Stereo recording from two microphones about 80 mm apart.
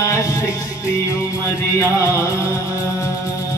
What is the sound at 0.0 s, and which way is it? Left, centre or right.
Music, left.